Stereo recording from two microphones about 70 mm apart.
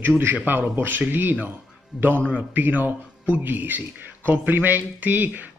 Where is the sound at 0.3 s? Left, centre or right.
Right.